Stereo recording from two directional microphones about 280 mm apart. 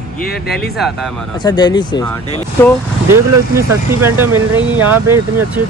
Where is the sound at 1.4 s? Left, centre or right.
Centre.